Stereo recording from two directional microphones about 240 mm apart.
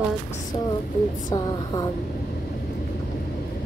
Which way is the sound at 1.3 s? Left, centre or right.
Centre.